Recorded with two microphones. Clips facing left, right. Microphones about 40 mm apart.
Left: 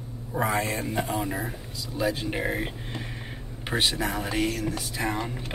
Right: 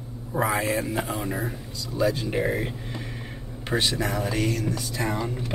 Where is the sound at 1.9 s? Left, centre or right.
Centre.